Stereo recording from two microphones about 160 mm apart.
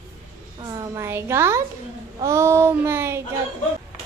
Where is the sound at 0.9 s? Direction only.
15° right (ahead or behind).